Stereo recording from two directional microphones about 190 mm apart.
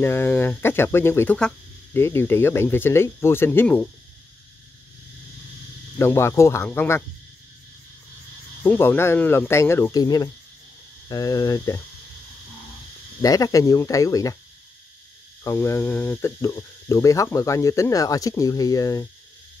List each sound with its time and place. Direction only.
0.0 s speech: 10° left (ahead or behind)
5.9 s speech: 15° left (ahead or behind)
8.6 s speech: 10° left (ahead or behind)
13.2 s speech: 20° left (ahead or behind)
15.4 s speech: 15° left (ahead or behind)